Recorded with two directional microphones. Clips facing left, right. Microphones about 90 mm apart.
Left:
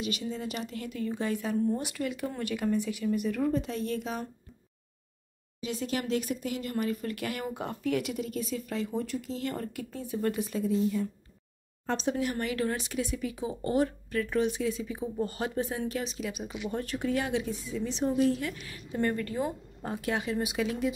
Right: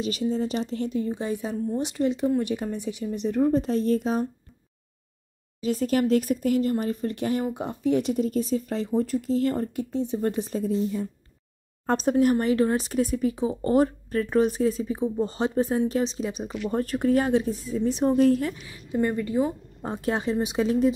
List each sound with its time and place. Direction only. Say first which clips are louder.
0.0 s speech: right 8 dB; 35° right (ahead or behind)
5.6 s speech: right 9 dB; 45° right (ahead or behind)
11.8 s speech: right 8 dB; 45° right (ahead or behind)
15.1 s speech: right 5 dB; 25° right (ahead or behind); by 18.5 s 45° right (ahead or behind)
18.7 s a woman's voice: right 3 dB; 10° right (ahead or behind)
19.9 s speech: right 5 dB; 35° right (ahead or behind)